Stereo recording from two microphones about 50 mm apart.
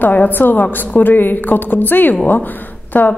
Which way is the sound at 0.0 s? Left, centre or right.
Left.